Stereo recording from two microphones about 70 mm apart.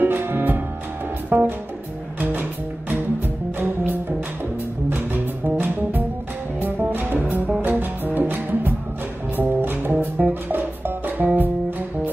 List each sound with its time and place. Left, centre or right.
0.0 s music: right
3.5 s music: right